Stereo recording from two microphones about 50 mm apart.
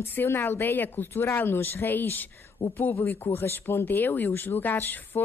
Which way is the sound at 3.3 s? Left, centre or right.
Left.